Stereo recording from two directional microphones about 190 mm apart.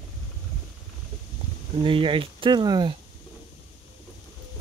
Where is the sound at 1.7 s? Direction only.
30° right (ahead or behind).